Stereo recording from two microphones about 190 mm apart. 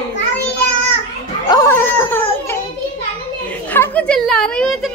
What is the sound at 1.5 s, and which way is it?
Speech, 15° left (ahead or behind).